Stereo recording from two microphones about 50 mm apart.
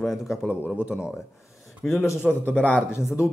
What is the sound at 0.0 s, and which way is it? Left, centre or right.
Speech, centre.